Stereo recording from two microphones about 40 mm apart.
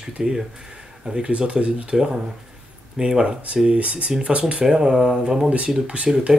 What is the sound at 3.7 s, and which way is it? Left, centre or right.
Speech, right.